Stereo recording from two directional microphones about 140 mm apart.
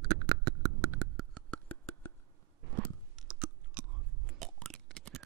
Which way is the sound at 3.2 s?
5° right (ahead or behind).